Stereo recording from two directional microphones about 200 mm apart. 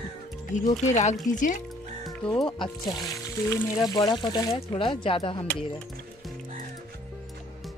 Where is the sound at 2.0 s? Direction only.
Centre (ahead or behind).